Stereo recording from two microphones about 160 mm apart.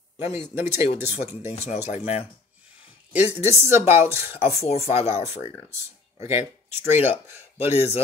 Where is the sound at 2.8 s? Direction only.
10° right (ahead or behind).